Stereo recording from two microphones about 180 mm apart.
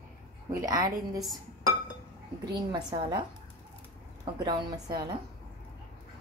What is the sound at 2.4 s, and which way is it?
Speech, 25° right (ahead or behind).